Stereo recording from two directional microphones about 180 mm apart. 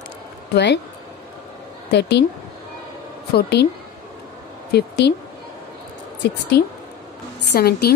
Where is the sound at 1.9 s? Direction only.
70° left (ahead or behind).